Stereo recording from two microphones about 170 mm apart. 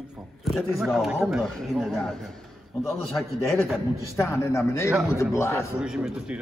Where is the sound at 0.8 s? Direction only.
5° right (ahead or behind).